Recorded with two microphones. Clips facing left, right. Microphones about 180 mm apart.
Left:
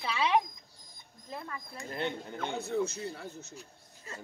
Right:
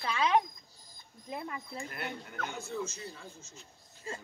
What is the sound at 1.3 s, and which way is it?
Speech, 15° right (ahead or behind).